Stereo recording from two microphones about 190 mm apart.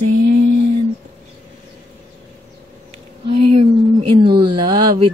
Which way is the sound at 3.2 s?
30° right (ahead or behind).